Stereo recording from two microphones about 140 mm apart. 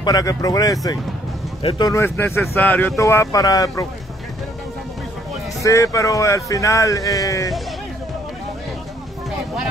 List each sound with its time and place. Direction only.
0.0 s speech: 25° left (ahead or behind)
1.6 s speech: 40° left (ahead or behind)
1.9 s speech: 20° left (ahead or behind)
5.6 s speech: 20° left (ahead or behind)